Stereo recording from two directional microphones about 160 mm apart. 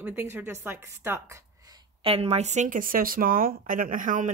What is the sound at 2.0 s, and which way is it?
Speech, 40° right (ahead or behind).